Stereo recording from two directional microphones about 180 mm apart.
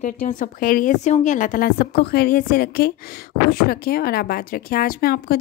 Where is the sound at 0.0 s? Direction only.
45° left (ahead or behind).